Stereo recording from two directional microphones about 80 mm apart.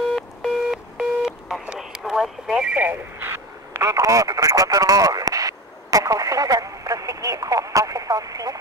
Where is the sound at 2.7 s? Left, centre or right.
Right.